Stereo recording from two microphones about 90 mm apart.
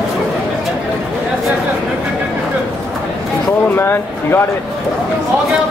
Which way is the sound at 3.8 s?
25° left (ahead or behind).